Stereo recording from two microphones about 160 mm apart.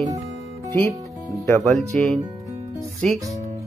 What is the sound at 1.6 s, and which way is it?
Speech, centre (ahead or behind).